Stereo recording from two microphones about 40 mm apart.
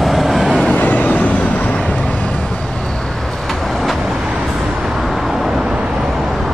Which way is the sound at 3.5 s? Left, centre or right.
Centre.